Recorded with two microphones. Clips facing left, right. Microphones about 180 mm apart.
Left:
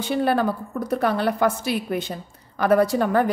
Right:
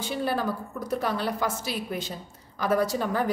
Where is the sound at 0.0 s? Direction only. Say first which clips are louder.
Left 7 dB; 65° left (ahead or behind).